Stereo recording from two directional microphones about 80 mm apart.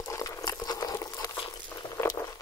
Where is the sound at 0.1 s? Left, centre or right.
Left.